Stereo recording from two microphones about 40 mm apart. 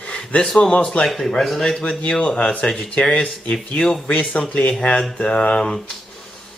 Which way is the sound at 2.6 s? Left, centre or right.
Centre.